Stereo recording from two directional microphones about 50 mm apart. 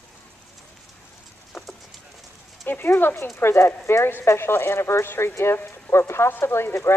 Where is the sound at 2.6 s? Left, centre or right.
Left.